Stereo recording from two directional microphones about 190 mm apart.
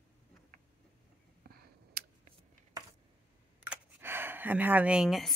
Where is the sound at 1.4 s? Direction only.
55° right (ahead or behind).